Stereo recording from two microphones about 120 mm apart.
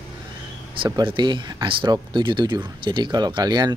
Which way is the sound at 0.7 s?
45° right (ahead or behind).